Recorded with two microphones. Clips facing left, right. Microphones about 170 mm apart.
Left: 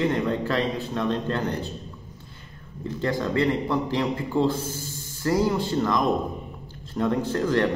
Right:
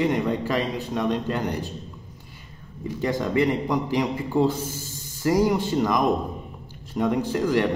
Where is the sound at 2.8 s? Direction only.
15° right (ahead or behind).